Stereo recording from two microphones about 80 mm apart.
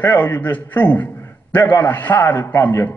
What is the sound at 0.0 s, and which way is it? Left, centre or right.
A man's voice, left.